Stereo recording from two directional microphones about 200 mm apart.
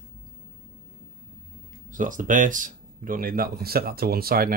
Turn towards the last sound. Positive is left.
turn(degrees=-50)  # may be behind; listen again after turning